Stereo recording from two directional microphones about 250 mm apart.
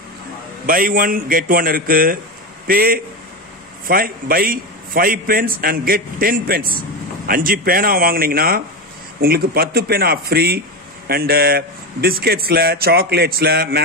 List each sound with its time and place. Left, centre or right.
0.7 s a man's voice: right